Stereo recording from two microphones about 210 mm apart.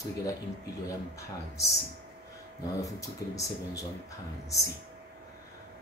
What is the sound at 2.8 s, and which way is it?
Speech, 15° left (ahead or behind).